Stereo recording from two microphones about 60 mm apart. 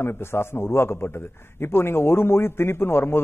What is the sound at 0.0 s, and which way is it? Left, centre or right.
A man's voice, left.